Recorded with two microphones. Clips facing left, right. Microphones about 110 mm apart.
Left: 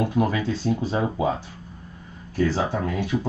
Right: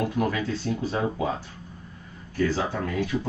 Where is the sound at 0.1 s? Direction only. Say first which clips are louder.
Left 3 dB; 20° left (ahead or behind).